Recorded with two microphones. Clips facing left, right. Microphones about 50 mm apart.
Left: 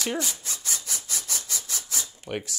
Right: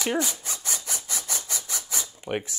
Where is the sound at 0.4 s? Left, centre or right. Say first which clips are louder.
Right 1 dB; centre.